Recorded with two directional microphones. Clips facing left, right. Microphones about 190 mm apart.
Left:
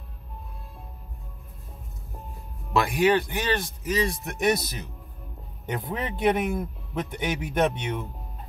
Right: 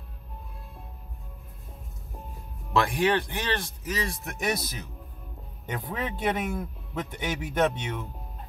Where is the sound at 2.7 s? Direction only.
15° left (ahead or behind).